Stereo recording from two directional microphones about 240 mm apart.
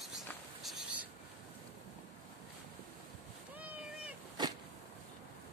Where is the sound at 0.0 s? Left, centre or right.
Centre.